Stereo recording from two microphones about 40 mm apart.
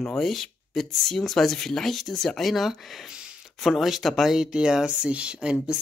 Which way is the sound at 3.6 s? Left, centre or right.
Centre.